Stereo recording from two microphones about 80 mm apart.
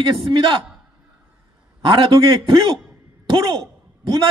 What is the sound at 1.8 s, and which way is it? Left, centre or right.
A man's voice, right.